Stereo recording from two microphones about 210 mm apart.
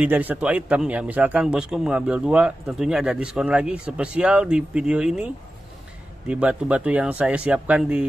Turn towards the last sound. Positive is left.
turn(degrees=-5)  # may be behind; listen again after turning